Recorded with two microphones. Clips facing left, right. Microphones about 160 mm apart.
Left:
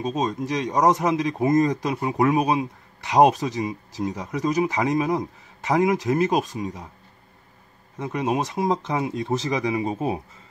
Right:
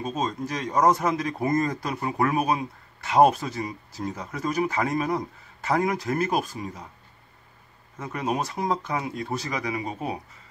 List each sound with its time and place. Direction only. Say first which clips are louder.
0.0 s speech: left 3 dB; 15° left (ahead or behind)
8.0 s speech: left 4 dB; 20° left (ahead or behind)